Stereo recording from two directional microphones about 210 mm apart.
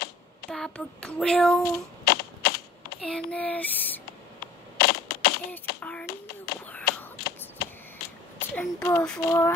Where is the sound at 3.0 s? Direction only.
5° left (ahead or behind).